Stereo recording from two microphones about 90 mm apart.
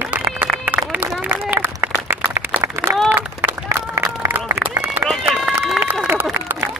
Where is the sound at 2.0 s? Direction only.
30° right (ahead or behind).